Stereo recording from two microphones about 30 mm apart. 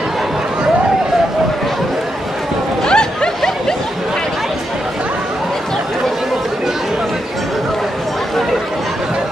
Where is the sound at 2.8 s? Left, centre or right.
Left.